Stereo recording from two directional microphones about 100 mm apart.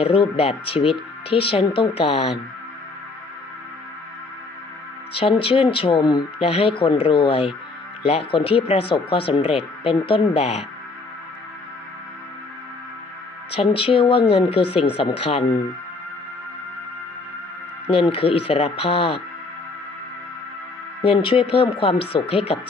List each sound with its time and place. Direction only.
0.0 s speech: 70° left (ahead or behind)
5.4 s speech: 65° left (ahead or behind)
6.4 s speech: 65° left (ahead or behind)
13.7 s speech: 60° left (ahead or behind)
17.8 s speech: 65° left (ahead or behind)
21.0 s speech: 60° left (ahead or behind); by 22.6 s 75° left (ahead or behind)